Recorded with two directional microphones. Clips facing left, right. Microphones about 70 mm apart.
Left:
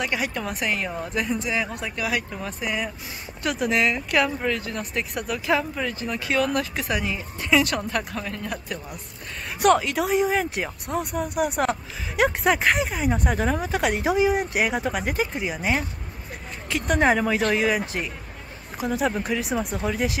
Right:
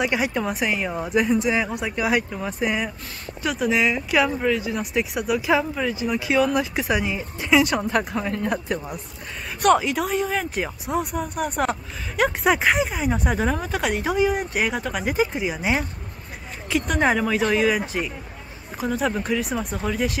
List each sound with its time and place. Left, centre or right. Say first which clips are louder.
0.0 s a woman's voice: right 4 dB; centre
8.3 s speech: right 6 dB; right
9.6 s speech: right 1 dB; centre